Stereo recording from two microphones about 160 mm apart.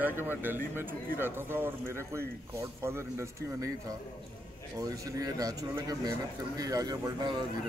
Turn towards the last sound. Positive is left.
turn(degrees=-25)  # may be behind; listen again after turning